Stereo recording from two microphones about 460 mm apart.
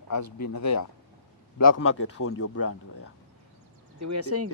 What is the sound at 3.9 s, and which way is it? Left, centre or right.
Speech, right.